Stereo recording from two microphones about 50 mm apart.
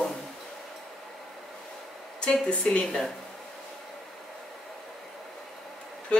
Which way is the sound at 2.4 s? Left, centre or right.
Centre.